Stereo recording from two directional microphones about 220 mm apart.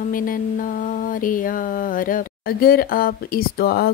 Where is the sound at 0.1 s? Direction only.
40° left (ahead or behind).